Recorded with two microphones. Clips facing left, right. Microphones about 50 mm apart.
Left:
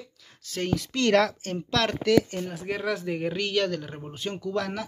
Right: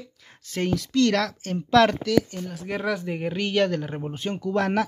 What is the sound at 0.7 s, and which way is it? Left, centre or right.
Speech, centre.